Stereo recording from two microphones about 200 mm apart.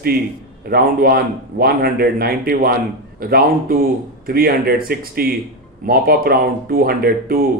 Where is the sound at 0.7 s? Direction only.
50° right (ahead or behind).